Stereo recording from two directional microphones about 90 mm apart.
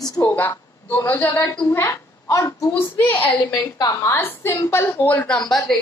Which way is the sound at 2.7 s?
20° left (ahead or behind).